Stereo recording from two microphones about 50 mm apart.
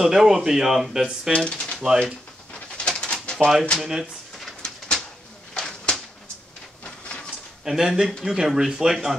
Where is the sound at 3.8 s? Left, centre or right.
Centre.